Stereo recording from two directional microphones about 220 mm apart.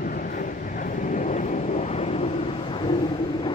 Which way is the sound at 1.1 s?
35° left (ahead or behind).